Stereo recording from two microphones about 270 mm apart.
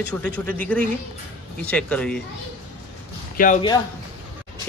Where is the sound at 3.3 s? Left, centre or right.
Left.